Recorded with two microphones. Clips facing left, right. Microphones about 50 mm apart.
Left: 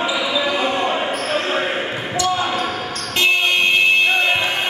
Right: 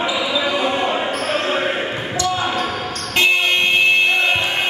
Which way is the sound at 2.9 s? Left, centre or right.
Left.